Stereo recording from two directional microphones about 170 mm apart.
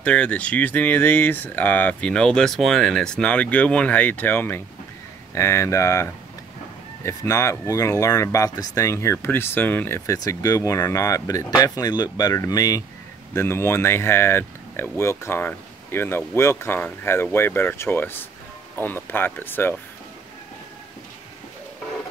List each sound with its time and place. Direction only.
0.0 s speech: 5° left (ahead or behind)